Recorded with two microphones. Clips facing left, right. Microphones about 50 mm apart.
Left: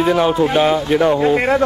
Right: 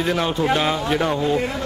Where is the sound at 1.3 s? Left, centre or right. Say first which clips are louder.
Left 8 dB; left.